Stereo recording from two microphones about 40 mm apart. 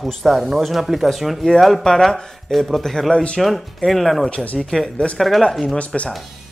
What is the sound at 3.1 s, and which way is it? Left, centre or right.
Speech, left.